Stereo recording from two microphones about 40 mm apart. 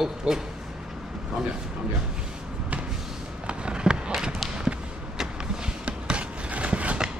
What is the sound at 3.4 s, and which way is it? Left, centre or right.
Fireworks, right.